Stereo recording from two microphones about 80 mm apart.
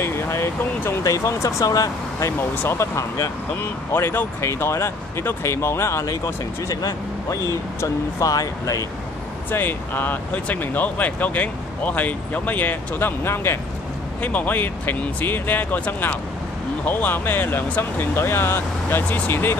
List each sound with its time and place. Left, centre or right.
0.0 s speech: left
2.3 s speech: left
6.7 s speech: left
9.5 s speech: left
14.2 s speech: left